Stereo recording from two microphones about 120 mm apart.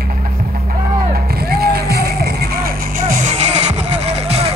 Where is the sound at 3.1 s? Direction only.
90° right; by 4.5 s 60° right (ahead or behind).